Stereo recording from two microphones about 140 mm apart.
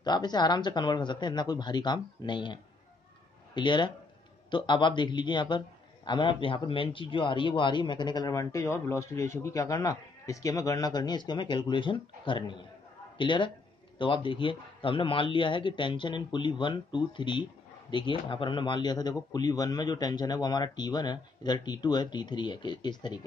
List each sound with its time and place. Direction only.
0.0 s a man's voice: 30° left (ahead or behind)